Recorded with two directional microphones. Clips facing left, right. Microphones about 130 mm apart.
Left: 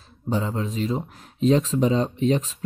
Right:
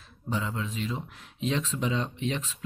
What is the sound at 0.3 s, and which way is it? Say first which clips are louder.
Speech: left 6 dB; 35° left (ahead or behind).